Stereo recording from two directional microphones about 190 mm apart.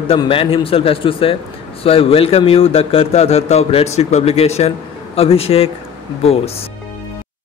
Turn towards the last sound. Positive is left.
turn(degrees=35)  # may be behind; listen again after turning